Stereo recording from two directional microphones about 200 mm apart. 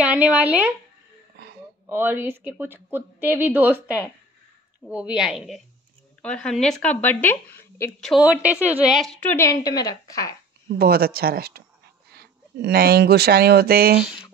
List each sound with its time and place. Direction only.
0.0 s speech: 5° right (ahead or behind)
1.4 s a sound: 55° right (ahead or behind)
1.9 s a woman's voice: 10° right (ahead or behind); by 8.1 s 10° left (ahead or behind)
8.1 s a woman's voice: 5° right (ahead or behind)
9.2 s speech: 10° left (ahead or behind)
10.8 s speech: 50° right (ahead or behind)